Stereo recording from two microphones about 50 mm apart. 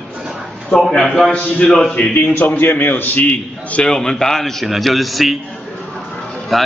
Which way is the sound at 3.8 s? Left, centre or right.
Centre.